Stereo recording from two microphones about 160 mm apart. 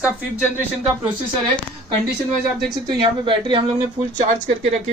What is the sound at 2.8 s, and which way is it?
Speech, 30° right (ahead or behind).